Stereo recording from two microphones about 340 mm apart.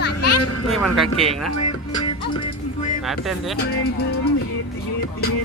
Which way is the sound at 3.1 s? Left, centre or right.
Centre.